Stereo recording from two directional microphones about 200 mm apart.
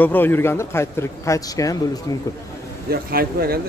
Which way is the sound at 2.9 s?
50° right (ahead or behind).